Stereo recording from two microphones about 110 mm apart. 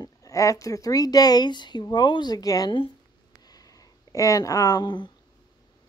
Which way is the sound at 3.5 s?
35° left (ahead or behind).